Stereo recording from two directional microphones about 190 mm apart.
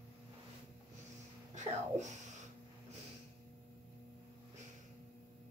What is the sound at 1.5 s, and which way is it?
Speech, 40° right (ahead or behind).